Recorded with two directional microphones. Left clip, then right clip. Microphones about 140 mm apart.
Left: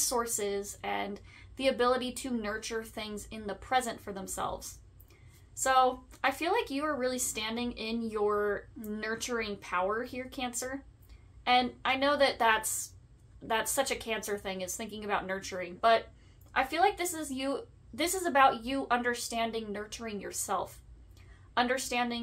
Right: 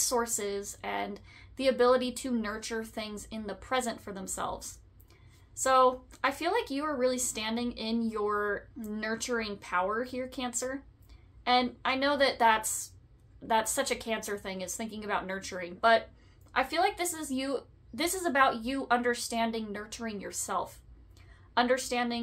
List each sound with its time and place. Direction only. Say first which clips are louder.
0.0 s speech: right 1 dB; 20° right (ahead or behind)